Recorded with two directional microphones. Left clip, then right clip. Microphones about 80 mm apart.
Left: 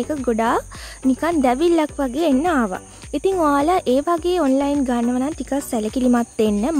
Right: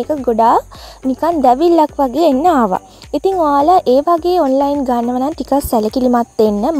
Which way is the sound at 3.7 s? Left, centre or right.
Right.